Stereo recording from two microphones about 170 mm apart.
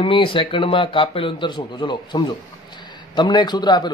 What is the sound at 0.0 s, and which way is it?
A man's voice, 30° left (ahead or behind).